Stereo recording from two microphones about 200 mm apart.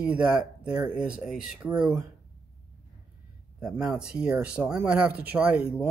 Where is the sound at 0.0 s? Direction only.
5° right (ahead or behind).